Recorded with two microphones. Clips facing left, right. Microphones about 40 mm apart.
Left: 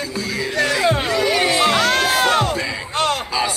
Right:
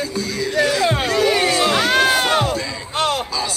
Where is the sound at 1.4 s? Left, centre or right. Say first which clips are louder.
Even; left.